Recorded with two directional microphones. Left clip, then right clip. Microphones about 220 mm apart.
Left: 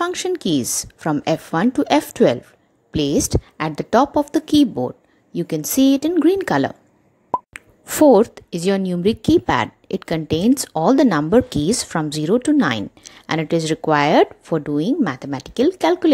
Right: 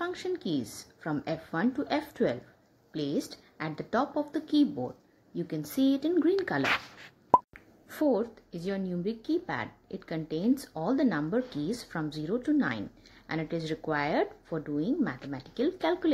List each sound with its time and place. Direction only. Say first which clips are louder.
0.0 s a woman's voice: left 12 dB; 50° left (ahead or behind)